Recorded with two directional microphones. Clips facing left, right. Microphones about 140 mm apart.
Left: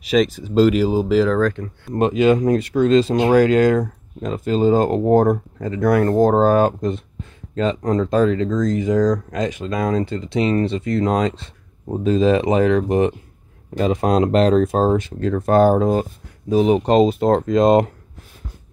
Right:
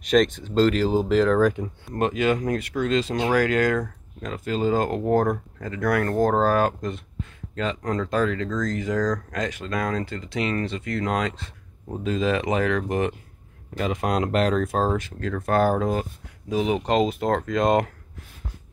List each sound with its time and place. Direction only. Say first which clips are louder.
0.0 s speech: left 2 dB; 5° left (ahead or behind)
1.4 s speech: left 1 dB; 10° right (ahead or behind)
2.0 s speech: left 7 dB; 20° left (ahead or behind)